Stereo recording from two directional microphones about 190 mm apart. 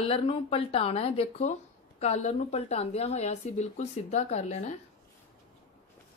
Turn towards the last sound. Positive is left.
turn(degrees=35)  # may be behind; listen again after turning